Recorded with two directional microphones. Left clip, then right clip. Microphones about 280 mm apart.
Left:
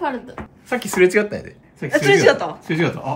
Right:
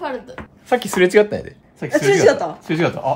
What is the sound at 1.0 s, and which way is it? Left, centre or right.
Speech, right.